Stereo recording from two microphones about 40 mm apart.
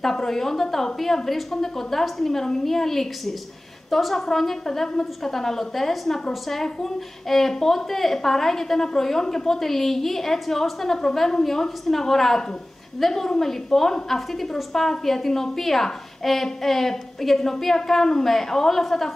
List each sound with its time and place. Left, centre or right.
0.0 s a woman's voice: centre